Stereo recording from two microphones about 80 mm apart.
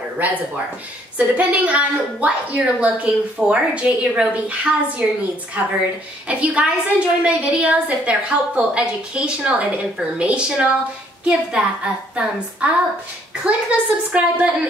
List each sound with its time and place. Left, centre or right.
0.2 s a woman's voice: centre
6.2 s a woman's voice: centre